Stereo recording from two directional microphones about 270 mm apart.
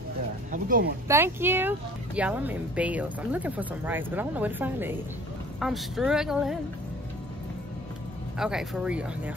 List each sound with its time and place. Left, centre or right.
0.5 s speech: right
1.0 s a woman's voice: centre
8.4 s a woman's voice: centre